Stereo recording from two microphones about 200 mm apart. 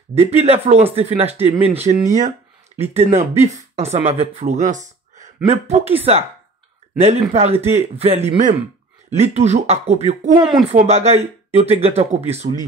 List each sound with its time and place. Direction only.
0.1 s speech: 30° right (ahead or behind)